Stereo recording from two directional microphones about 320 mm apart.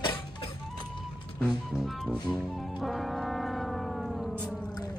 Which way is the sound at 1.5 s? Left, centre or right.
Centre.